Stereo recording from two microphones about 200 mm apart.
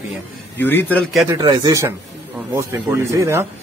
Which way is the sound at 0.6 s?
10° left (ahead or behind).